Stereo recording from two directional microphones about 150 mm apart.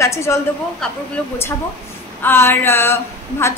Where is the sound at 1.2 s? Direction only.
10° left (ahead or behind).